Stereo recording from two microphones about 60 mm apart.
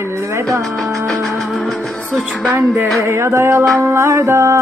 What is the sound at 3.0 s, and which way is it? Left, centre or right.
Music, right.